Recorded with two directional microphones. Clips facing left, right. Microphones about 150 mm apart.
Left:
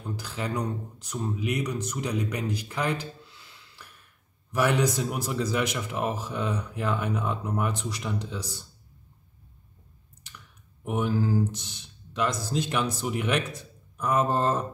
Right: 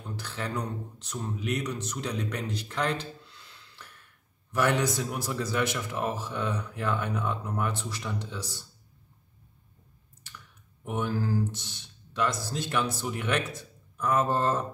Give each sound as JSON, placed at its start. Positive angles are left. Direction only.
{"t": 0.1, "sound": "speech", "side_deg": 10}
{"t": 10.9, "sound": "speech", "side_deg": 15}